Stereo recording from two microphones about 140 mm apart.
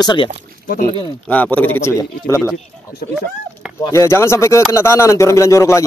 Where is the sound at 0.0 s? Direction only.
35° left (ahead or behind).